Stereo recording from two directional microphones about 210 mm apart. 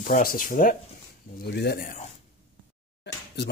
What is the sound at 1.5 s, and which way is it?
Speech, 50° left (ahead or behind).